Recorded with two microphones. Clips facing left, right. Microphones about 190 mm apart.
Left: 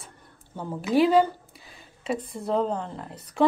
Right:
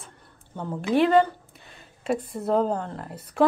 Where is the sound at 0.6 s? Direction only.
5° left (ahead or behind).